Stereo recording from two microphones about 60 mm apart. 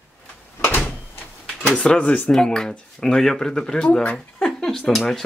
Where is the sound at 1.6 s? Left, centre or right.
Centre.